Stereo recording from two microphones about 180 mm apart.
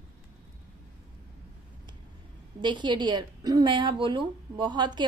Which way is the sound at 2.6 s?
25° right (ahead or behind).